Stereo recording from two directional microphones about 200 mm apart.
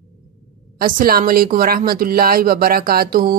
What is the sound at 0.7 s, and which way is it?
A woman's voice, 45° right (ahead or behind).